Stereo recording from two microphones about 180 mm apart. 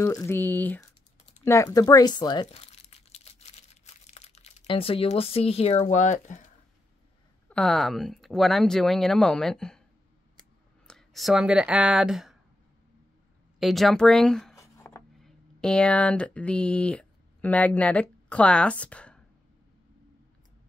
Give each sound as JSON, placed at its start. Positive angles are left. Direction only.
{"t": 0.0, "sound": "speech", "side_deg": 20}
{"t": 2.4, "sound": "crumpling", "side_deg": 35}
{"t": 7.4, "sound": "speech", "side_deg": 5}
{"t": 10.9, "sound": "speech", "side_deg": 0}
{"t": 13.6, "sound": "speech", "side_deg": 0}
{"t": 14.6, "sound": "a sound", "side_deg": 15}
{"t": 15.1, "sound": "speech", "side_deg": 5}